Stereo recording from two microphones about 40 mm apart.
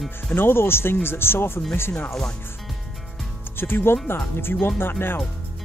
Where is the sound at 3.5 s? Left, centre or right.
Left.